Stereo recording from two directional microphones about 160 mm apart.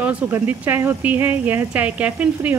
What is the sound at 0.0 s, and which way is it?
Speech, 10° right (ahead or behind).